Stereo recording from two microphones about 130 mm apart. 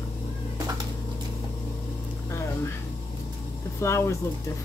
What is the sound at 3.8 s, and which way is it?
Speech, 20° left (ahead or behind).